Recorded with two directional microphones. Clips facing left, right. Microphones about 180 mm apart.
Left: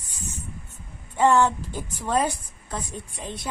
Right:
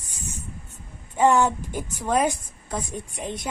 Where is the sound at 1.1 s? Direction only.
15° right (ahead or behind).